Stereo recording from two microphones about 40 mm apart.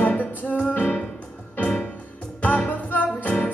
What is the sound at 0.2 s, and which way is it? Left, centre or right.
Music, left.